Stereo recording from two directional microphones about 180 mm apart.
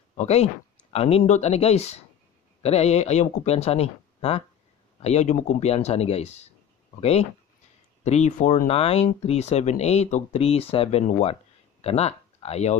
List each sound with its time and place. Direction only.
0.1 s speech: 35° left (ahead or behind)